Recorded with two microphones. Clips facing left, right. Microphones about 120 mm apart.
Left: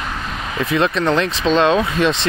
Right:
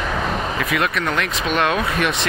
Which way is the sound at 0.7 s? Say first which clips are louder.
Left 7 dB; 25° left (ahead or behind).